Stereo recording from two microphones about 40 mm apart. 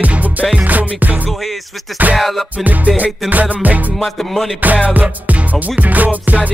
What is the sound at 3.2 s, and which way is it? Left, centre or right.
Music, right.